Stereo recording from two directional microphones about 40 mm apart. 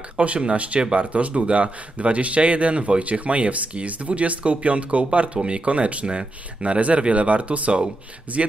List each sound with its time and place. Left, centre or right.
0.2 s speech: right